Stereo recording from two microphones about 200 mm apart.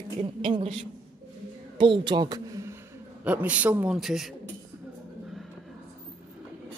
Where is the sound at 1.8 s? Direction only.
25° right (ahead or behind).